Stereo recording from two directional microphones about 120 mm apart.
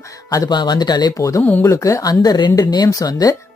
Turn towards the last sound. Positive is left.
turn(degrees=30)  # may be behind; listen again after turning